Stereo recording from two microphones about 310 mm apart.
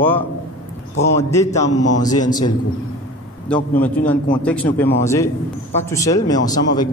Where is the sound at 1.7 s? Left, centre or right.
Left.